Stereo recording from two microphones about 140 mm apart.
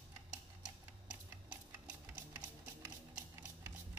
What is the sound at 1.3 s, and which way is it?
Sewing machine, 15° right (ahead or behind).